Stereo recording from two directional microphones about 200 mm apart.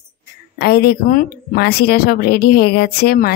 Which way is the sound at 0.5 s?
50° left (ahead or behind).